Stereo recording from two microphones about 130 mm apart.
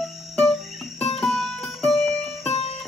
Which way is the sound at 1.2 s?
5° left (ahead or behind).